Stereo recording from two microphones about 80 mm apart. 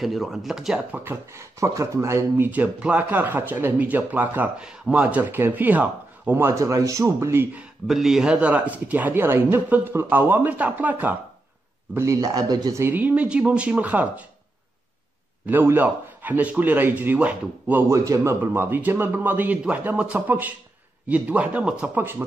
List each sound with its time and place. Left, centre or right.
0.0 s speech: centre
0.9 s speech: right
2.5 s speech: centre; by 7.4 s right
7.8 s speech: centre; by 11.1 s right
11.9 s speech: right
12.9 s speech: centre
15.4 s speech: right
17.8 s speech: right; by 21.9 s centre
21.9 s speech: right